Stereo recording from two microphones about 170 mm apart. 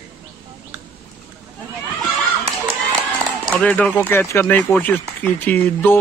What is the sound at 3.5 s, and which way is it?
Speech, 10° left (ahead or behind).